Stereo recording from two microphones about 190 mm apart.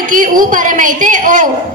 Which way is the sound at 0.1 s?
45° right (ahead or behind).